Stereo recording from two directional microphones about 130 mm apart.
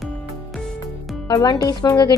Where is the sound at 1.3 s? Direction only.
30° left (ahead or behind).